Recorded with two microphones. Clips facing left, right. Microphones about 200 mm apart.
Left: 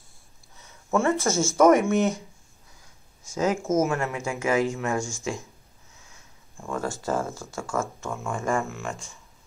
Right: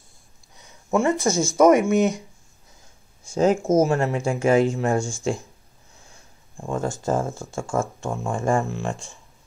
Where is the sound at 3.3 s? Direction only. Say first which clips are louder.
Right 5 dB; 30° right (ahead or behind).